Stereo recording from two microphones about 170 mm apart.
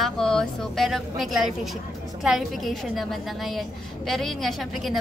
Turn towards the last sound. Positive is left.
turn(degrees=0)  # may be behind; listen again after turning